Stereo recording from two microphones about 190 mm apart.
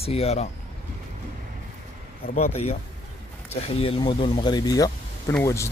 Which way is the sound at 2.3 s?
35° left (ahead or behind).